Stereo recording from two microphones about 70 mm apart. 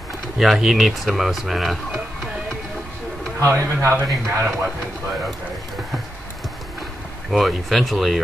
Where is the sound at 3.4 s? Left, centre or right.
Right.